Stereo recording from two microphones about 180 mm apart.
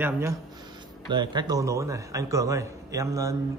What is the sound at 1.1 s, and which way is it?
A man's voice, 25° right (ahead or behind).